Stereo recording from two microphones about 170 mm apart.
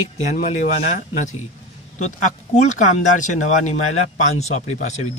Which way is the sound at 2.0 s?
45° left (ahead or behind).